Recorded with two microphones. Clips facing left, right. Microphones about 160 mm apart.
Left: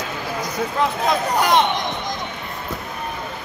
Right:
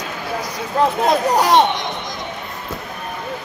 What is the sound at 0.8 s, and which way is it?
Speech, 35° right (ahead or behind).